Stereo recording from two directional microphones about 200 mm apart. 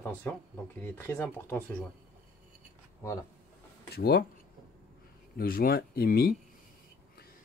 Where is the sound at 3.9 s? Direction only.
50° left (ahead or behind).